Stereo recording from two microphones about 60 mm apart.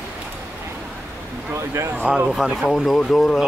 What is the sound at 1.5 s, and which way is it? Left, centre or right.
Speech, right.